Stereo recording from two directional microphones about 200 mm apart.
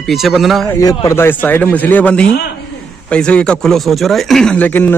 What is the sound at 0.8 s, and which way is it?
Speech, 15° left (ahead or behind).